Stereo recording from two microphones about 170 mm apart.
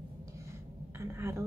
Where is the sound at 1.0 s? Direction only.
15° right (ahead or behind).